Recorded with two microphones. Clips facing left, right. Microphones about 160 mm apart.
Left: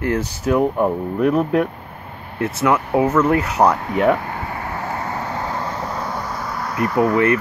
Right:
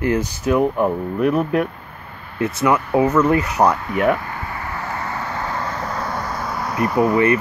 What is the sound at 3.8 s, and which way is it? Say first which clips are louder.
Vehicle: left 1 dB; 30° left (ahead or behind).